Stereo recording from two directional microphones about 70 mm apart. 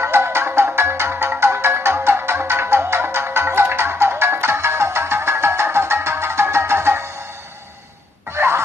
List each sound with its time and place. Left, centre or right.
0.0 s music: right
8.3 s music: right